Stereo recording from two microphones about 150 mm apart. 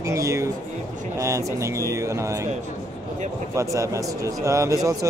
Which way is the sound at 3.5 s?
20° right (ahead or behind).